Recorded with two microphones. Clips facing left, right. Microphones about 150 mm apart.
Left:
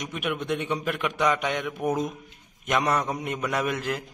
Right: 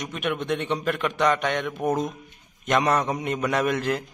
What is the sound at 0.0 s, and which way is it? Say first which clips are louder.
A man's voice: right 2 dB; 5° left (ahead or behind).